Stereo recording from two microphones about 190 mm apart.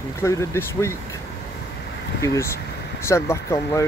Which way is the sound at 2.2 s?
15° left (ahead or behind).